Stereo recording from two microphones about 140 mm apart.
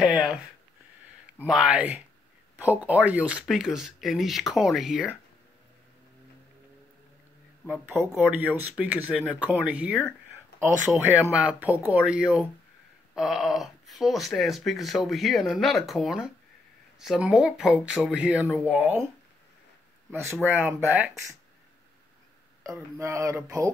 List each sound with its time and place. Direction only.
0.0 s speech: 5° right (ahead or behind)
7.6 s speech: 15° right (ahead or behind)
20.1 s speech: 15° right (ahead or behind)
22.6 s speech: 20° right (ahead or behind)